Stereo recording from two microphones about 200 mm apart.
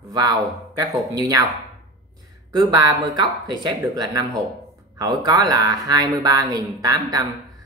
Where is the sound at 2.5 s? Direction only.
15° right (ahead or behind).